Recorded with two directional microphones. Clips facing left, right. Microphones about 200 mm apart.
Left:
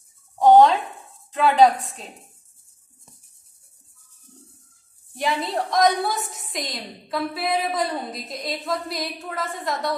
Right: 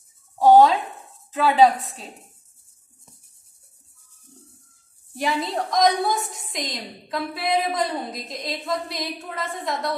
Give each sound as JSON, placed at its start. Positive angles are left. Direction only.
{"t": 0.4, "sound": "a sound", "side_deg": -5}
{"t": 1.3, "sound": "a woman's voice", "side_deg": -5}
{"t": 5.1, "sound": "a woman's voice", "side_deg": 0}